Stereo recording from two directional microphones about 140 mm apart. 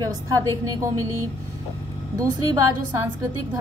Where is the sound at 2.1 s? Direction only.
25° right (ahead or behind).